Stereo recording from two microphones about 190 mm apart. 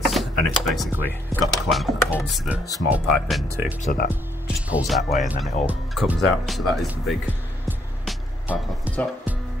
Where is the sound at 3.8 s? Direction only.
50° left (ahead or behind).